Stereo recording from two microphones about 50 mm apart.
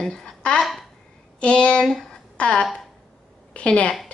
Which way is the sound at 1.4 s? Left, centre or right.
Left.